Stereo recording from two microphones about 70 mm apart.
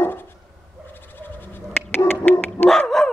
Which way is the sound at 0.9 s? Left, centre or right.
Left.